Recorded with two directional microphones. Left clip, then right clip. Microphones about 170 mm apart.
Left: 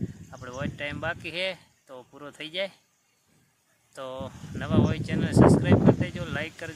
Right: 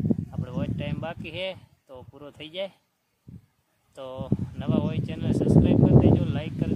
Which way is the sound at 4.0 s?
5° right (ahead or behind).